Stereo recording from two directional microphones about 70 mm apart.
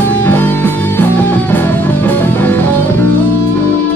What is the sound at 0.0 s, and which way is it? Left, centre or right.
Music, left.